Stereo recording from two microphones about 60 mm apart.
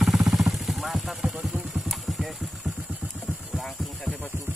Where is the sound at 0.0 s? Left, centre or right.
Centre.